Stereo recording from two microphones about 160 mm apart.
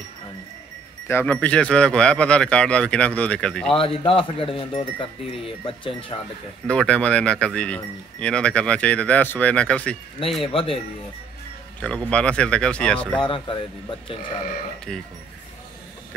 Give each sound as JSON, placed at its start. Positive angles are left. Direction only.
{"t": 1.0, "sound": "speech", "side_deg": 10}
{"t": 3.7, "sound": "speech", "side_deg": 35}
{"t": 6.7, "sound": "speech", "side_deg": 5}
{"t": 10.5, "sound": "speech", "side_deg": 35}
{"t": 11.8, "sound": "speech", "side_deg": 5}
{"t": 13.2, "sound": "speech", "side_deg": 30}
{"t": 14.9, "sound": "speech", "side_deg": 5}